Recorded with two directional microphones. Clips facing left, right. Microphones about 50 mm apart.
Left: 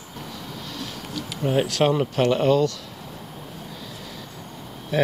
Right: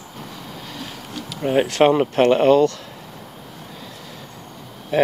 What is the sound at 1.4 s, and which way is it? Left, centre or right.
Speech, right.